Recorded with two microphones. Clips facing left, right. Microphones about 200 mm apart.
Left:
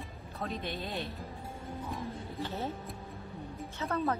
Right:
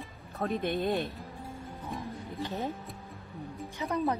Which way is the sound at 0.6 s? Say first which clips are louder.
Right 8 dB; 55° right (ahead or behind).